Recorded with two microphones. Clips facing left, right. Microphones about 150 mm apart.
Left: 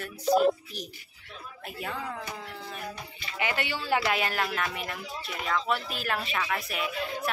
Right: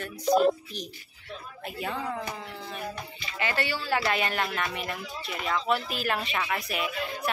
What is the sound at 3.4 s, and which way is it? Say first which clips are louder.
Speech: right 1 dB; 15° left (ahead or behind).